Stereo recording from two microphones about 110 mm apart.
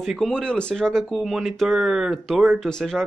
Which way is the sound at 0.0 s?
Centre (ahead or behind).